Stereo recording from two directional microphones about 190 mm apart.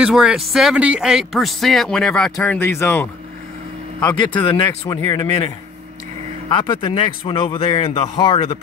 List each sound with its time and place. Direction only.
0.0 s speech: 5° right (ahead or behind); by 5.3 s 15° left (ahead or behind)
6.5 s speech: 25° left (ahead or behind)